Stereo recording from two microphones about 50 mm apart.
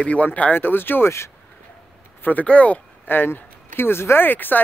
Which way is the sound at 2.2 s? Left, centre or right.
Left.